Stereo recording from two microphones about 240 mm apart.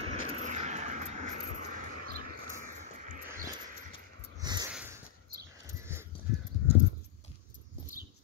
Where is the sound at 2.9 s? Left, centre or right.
Right.